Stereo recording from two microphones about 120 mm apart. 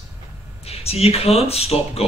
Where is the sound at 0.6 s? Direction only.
55° left (ahead or behind).